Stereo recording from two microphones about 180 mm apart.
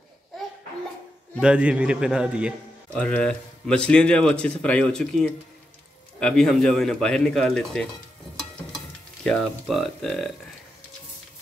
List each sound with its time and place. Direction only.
1.4 s speech: 5° right (ahead or behind)
2.9 s speech: 5° left (ahead or behind)
9.2 s speech: centre (ahead or behind)